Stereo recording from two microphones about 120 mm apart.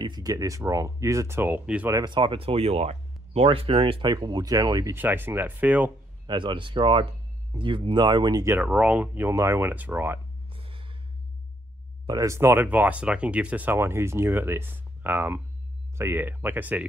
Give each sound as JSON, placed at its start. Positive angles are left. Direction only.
{"t": 0.0, "sound": "speech", "side_deg": -35}
{"t": 2.0, "sound": "speech", "side_deg": -40}
{"t": 4.9, "sound": "speech", "side_deg": -15}
{"t": 6.2, "sound": "speech", "side_deg": -40}
{"t": 8.5, "sound": "speech", "side_deg": -10}
{"t": 10.5, "sound": "gasp", "side_deg": -50}
{"t": 12.1, "sound": "speech", "side_deg": -25}